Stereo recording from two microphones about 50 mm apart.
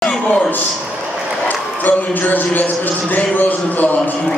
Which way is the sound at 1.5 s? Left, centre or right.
Left.